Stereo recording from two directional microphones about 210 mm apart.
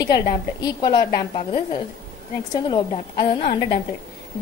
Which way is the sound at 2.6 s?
20° left (ahead or behind).